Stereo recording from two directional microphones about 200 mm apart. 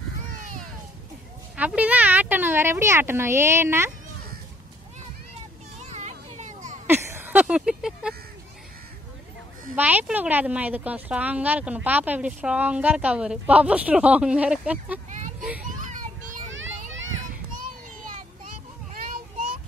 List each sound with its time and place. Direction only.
1.6 s speech: 5° right (ahead or behind)
5.8 s a sound: 35° right (ahead or behind)
6.9 s a sound: 10° right (ahead or behind)
9.8 s speech: 5° right (ahead or behind)
15.7 s children playing: 40° right (ahead or behind)
16.5 s children playing: 70° right (ahead or behind)
17.6 s children playing: 40° right (ahead or behind)